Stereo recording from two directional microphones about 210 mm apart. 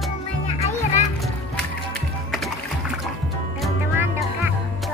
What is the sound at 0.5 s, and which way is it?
Children playing, 30° left (ahead or behind).